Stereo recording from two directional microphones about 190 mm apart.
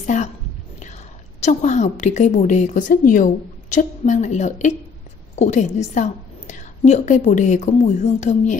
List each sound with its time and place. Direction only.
0.0 s whispering: 40° left (ahead or behind)
1.4 s a woman's voice: 40° left (ahead or behind)